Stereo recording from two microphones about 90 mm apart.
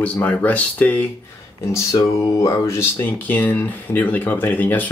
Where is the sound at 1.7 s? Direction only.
35° left (ahead or behind); by 4.9 s 20° left (ahead or behind).